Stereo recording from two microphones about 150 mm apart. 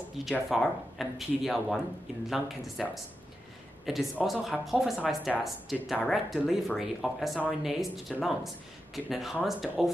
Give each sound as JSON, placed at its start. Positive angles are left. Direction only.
{"t": 0.2, "sound": "speech", "side_deg": 0}
{"t": 3.8, "sound": "speech", "side_deg": 0}